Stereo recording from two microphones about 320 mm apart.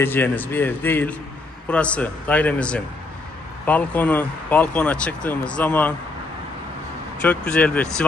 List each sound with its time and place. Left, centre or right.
0.0 s a man's voice: centre
7.2 s speech: centre